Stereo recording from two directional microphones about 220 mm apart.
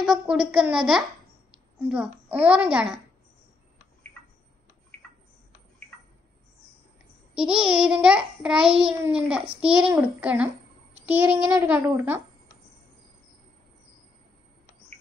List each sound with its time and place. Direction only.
0.0 s a child's voice: 5° right (ahead or behind)
7.3 s a child's voice: 5° right (ahead or behind)
9.8 s a child's voice: 20° right (ahead or behind)
10.2 s a child's voice: 5° right (ahead or behind)